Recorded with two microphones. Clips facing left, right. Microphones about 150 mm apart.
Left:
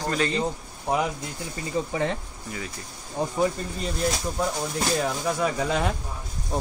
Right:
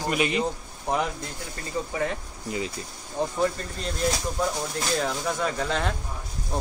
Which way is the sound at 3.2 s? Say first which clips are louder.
Even; 20° left (ahead or behind).